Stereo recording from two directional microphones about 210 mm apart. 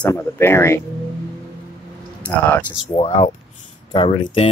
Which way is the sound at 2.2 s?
10° left (ahead or behind).